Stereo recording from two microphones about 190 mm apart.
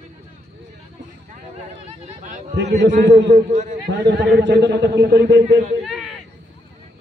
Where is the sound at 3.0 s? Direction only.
65° right (ahead or behind).